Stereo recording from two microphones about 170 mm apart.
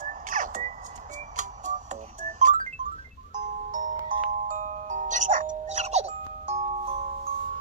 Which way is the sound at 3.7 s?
50° right (ahead or behind).